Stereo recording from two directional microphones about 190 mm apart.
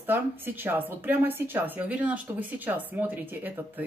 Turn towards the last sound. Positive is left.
turn(degrees=-10)  # may be behind; listen again after turning